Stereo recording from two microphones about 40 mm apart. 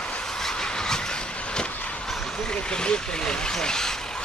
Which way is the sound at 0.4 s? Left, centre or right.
Centre.